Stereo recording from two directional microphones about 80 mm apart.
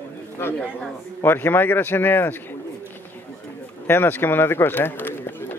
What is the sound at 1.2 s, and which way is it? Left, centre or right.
Speech, left.